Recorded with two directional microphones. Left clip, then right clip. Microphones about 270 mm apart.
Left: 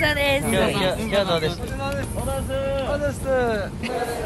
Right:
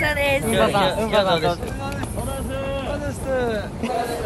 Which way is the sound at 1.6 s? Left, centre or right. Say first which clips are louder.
Left 1 dB; centre.